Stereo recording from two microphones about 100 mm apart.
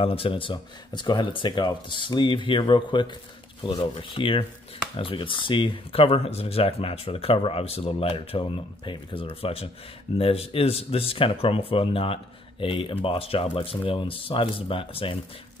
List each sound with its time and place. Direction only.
0.0 s speech: 65° left (ahead or behind)